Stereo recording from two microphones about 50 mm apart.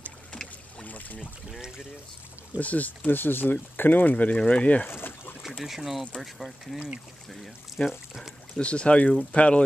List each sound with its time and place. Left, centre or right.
0.3 s boat: centre
0.8 s boat: left
2.6 s speech: left
4.8 s a sound: left
5.6 s speech: centre
8.5 s speech: left